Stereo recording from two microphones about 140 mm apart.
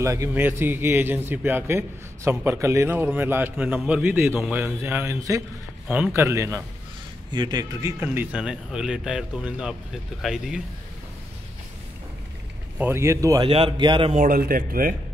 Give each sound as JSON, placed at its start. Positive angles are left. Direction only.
{"t": 0.0, "sound": "a man's voice", "side_deg": -20}
{"t": 7.2, "sound": "a man's voice", "side_deg": -30}
{"t": 12.7, "sound": "speech", "side_deg": -15}
{"t": 13.5, "sound": "a man's voice", "side_deg": -40}
{"t": 14.1, "sound": "speech", "side_deg": -80}